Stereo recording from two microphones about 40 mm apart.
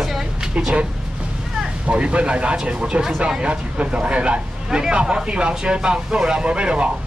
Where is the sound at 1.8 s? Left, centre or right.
Right.